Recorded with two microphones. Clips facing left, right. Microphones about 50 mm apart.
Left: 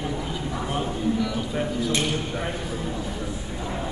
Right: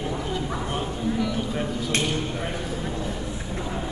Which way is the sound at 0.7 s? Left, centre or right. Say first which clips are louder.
Left 2 dB; centre.